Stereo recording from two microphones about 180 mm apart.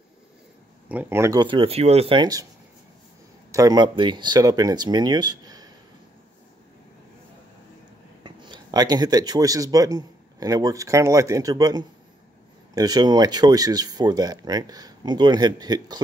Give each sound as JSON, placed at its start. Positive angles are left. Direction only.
{"t": 0.8, "sound": "speech", "side_deg": -10}
{"t": 3.5, "sound": "speech", "side_deg": -20}
{"t": 8.2, "sound": "speech", "side_deg": -25}